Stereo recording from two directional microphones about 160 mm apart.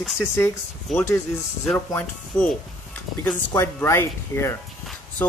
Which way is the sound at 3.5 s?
15° left (ahead or behind).